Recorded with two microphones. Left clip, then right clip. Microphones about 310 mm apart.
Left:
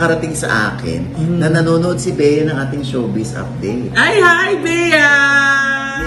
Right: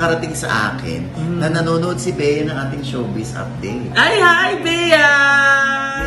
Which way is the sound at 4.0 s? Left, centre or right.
Centre.